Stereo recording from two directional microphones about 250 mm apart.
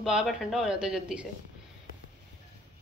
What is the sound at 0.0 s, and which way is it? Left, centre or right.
A woman's voice, centre.